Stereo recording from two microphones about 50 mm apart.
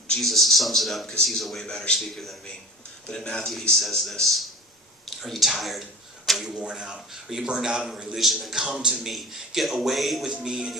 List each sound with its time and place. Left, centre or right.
0.2 s a man's voice: centre
3.3 s a man's voice: centre
6.5 s a man's voice: centre
10.3 s speech: centre